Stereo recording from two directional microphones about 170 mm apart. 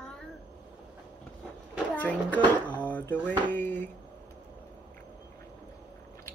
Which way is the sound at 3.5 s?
10° left (ahead or behind).